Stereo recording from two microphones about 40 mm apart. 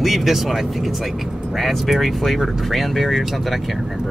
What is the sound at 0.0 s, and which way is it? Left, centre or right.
Speech, centre.